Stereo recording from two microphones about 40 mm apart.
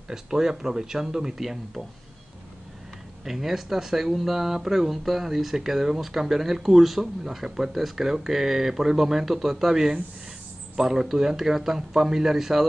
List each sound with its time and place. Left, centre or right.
0.1 s speech: centre
3.3 s speech: centre